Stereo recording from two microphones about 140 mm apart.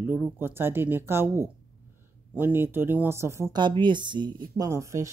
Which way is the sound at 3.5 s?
35° right (ahead or behind).